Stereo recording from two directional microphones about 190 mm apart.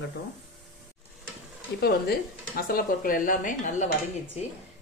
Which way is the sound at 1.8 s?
50° left (ahead or behind).